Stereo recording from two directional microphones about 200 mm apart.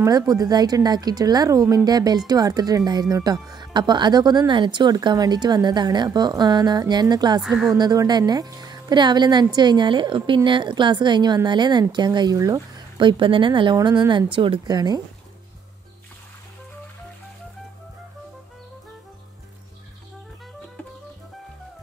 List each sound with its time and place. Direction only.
0.0 s speech: 15° right (ahead or behind)